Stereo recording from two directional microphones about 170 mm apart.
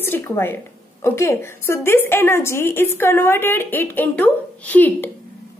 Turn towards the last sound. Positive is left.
turn(degrees=10)  # may be behind; listen again after turning